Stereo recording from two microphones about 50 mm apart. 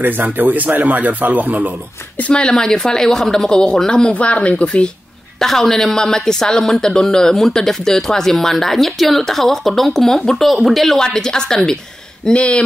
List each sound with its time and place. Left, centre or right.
0.0 s a man's voice: right
2.1 s speech: left
3.9 s speech: left
5.4 s speech: centre
11.0 s speech: centre
12.3 s speech: left